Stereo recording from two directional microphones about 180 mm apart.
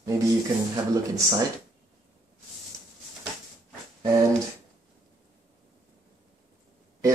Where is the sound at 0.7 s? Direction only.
20° right (ahead or behind).